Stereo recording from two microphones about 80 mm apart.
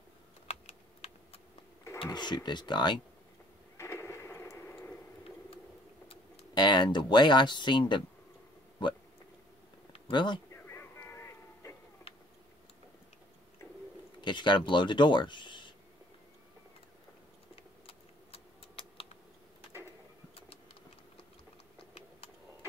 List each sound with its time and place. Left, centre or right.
2.1 s speech: left
3.7 s a sound: left
6.5 s speech: left
10.1 s speech: left
10.5 s a sound: left
14.2 s speech: left